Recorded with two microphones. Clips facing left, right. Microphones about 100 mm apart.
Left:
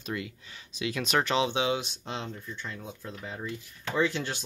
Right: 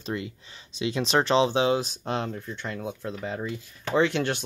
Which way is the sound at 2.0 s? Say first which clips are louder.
Right 7 dB; 60° right (ahead or behind).